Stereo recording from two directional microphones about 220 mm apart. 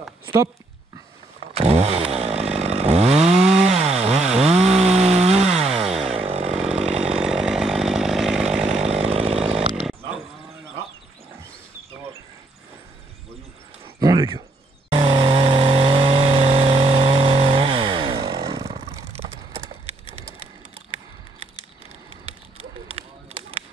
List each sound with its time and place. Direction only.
1.5 s chainsaw: 30° right (ahead or behind)
5.9 s chainsaw: centre (ahead or behind)
6.1 s chainsaw: 25° right (ahead or behind)
6.6 s chainsaw: centre (ahead or behind)
8.9 s chainsaw: 25° right (ahead or behind)
9.8 s roaring cats: centre (ahead or behind)
13.8 s a sound: 20° right (ahead or behind)
14.9 s vehicle: 25° right (ahead or behind)